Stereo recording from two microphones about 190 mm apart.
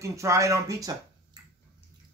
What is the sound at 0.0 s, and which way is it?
Speech, 15° right (ahead or behind).